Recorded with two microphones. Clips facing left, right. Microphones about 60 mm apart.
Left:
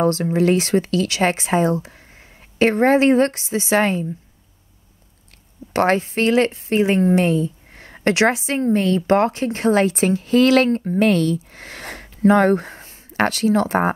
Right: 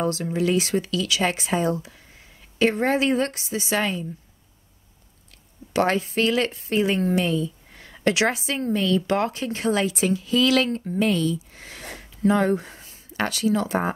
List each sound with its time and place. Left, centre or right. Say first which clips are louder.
0.0 s speech: left 6 dB; left
5.7 s speech: left 4 dB; left
7.2 s a sound: left 5 dB; left
8.5 s speech: left 5 dB; left
11.1 s speech: left 5 dB; left